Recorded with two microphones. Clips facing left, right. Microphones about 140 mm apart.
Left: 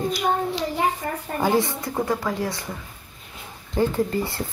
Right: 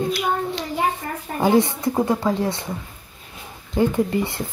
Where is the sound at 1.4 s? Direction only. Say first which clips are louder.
Right 5 dB; 20° right (ahead or behind).